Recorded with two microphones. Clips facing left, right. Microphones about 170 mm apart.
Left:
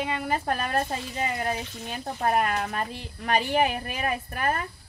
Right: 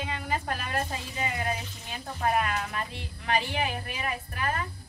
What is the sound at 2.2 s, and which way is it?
A woman's voice, 45° left (ahead or behind).